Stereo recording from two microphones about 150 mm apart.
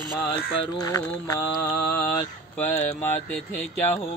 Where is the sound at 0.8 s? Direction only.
25° left (ahead or behind).